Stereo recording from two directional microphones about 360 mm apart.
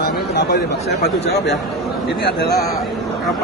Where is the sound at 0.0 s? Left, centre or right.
Left.